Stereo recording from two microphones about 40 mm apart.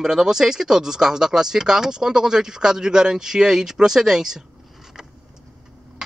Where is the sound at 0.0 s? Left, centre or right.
Centre.